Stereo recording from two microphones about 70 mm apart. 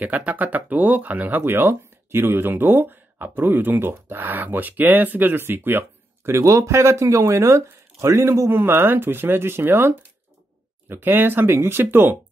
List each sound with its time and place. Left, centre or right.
0.0 s speech: right
6.3 s speech: right